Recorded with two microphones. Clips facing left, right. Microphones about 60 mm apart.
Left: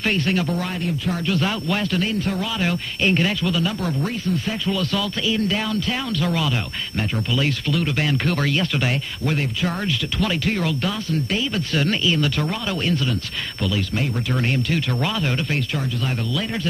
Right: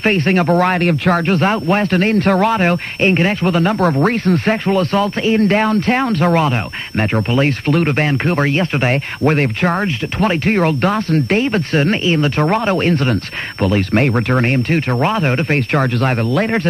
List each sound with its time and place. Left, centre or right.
0.0 s a man's voice: right
1.2 s a man's voice: right
12.4 s a man's voice: right
15.7 s a man's voice: right